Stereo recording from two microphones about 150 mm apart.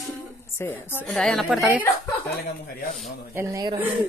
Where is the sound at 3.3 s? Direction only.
20° right (ahead or behind).